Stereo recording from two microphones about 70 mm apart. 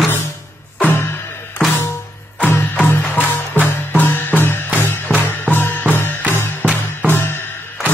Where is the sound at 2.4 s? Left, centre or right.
Left.